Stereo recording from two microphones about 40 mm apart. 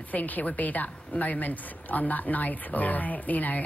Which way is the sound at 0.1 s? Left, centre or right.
Left.